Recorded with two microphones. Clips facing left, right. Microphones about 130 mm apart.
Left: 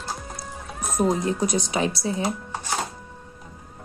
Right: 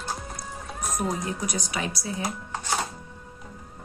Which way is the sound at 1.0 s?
30° left (ahead or behind).